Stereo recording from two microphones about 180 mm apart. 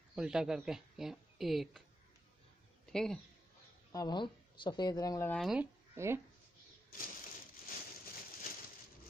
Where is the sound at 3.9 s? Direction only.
25° left (ahead or behind).